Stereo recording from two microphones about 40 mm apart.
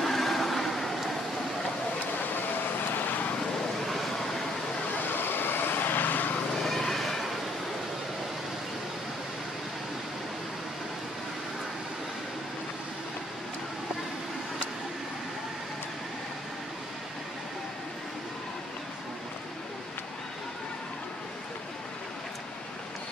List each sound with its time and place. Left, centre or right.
0.0 s vehicle: centre
2.9 s vehicle: left
3.8 s vehicle: centre
4.9 s vehicle: left
6.6 s a sound: centre